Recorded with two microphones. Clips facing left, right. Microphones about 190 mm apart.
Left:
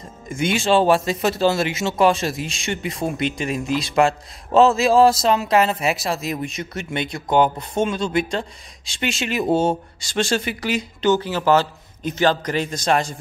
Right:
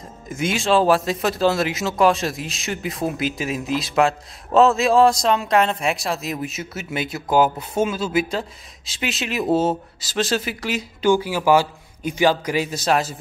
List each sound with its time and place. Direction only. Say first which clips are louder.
0.3 s a man's voice: left 1 dB; centre (ahead or behind)